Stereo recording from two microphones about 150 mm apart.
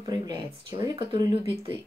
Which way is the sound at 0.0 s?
25° right (ahead or behind).